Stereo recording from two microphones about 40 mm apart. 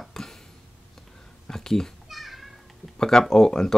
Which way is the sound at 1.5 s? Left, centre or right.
Centre.